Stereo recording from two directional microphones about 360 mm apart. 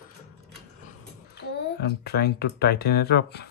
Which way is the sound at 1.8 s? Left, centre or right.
Left.